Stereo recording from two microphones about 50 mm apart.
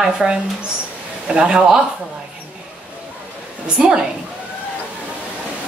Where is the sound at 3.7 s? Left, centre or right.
Centre.